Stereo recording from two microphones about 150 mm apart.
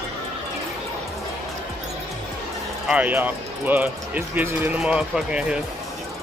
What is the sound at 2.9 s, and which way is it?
Speech, 10° right (ahead or behind).